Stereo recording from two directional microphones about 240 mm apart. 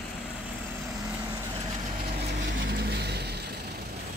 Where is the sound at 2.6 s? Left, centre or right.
Right.